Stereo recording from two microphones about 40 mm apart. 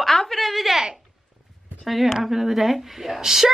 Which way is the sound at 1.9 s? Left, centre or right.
Centre.